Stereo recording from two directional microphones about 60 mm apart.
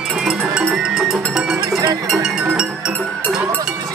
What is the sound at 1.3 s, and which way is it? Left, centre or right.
Cowbell, centre.